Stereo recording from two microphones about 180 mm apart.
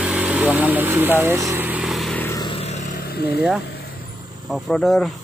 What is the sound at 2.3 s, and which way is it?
Vehicle, 25° left (ahead or behind).